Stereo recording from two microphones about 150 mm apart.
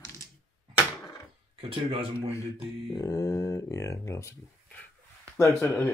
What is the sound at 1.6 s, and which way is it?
Speech, 35° right (ahead or behind).